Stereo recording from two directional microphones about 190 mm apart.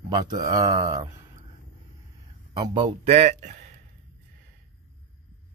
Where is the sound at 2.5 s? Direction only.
25° right (ahead or behind).